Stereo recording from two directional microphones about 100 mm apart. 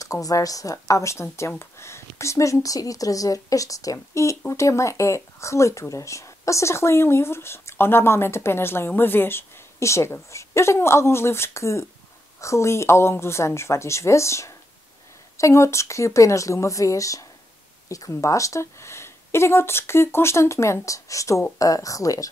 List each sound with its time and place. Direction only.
0.0 s speech: 35° left (ahead or behind)